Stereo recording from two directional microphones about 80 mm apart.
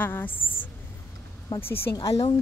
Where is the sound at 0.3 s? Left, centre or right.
Left.